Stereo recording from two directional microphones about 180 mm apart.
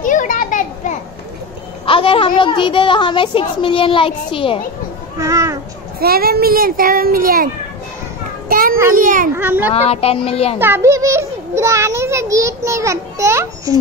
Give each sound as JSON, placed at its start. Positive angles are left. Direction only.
{"t": 0.0, "sound": "children playing", "side_deg": 45}
{"t": 1.9, "sound": "a woman's voice", "side_deg": 30}
{"t": 5.2, "sound": "cat", "side_deg": -15}
{"t": 5.9, "sound": "a child's voice", "side_deg": -60}
{"t": 8.5, "sound": "a child's voice", "side_deg": -50}
{"t": 9.4, "sound": "a child's voice", "side_deg": -10}
{"t": 9.8, "sound": "a child's voice", "side_deg": 35}
{"t": 10.6, "sound": "a child's voice", "side_deg": -15}